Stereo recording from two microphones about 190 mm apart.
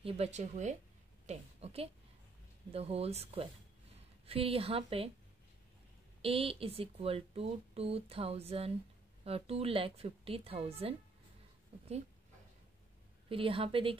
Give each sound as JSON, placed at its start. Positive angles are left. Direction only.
{"t": 0.0, "sound": "a woman's voice", "side_deg": -35}
{"t": 6.2, "sound": "speech", "side_deg": -30}
{"t": 13.3, "sound": "a woman's voice", "side_deg": -30}